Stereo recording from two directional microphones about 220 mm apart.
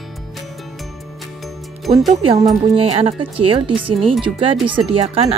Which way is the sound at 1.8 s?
Centre (ahead or behind).